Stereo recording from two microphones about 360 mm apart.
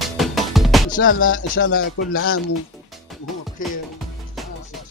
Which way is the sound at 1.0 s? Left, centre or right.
Left.